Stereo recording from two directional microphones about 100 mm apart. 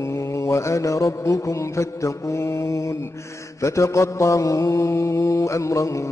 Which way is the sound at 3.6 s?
30° left (ahead or behind).